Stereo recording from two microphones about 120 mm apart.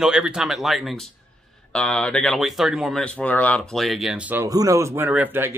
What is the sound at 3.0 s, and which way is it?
Speech, 10° left (ahead or behind).